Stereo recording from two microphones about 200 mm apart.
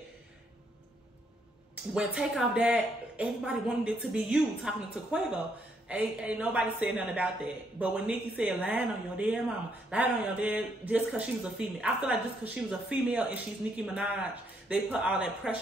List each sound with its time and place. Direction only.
2.0 s a woman's voice: 5° right (ahead or behind)